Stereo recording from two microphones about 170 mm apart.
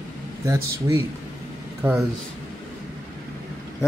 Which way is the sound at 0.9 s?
15° right (ahead or behind).